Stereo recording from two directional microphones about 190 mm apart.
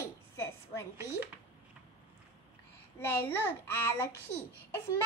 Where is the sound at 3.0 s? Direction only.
10° left (ahead or behind).